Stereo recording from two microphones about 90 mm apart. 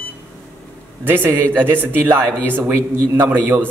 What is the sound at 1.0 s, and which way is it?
A man's voice, 20° right (ahead or behind).